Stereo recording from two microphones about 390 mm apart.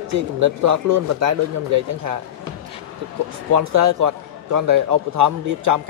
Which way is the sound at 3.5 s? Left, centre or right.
Right.